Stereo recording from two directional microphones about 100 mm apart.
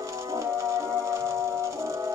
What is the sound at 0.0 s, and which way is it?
Music, 30° right (ahead or behind).